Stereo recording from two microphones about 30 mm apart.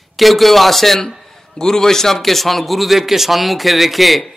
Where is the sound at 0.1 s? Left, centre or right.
Centre.